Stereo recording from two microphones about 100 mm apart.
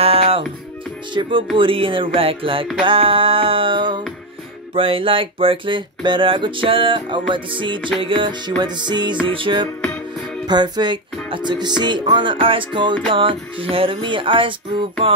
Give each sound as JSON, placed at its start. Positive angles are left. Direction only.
{"t": 0.0, "sound": "music", "side_deg": -75}
{"t": 1.1, "sound": "music", "side_deg": -50}
{"t": 1.6, "sound": "music", "side_deg": -60}
{"t": 9.2, "sound": "music", "side_deg": -60}
{"t": 10.4, "sound": "music", "side_deg": -45}